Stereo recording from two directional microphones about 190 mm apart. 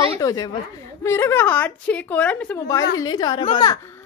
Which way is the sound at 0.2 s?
20° left (ahead or behind).